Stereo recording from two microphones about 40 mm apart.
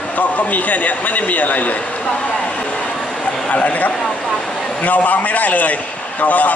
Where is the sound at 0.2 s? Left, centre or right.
Left.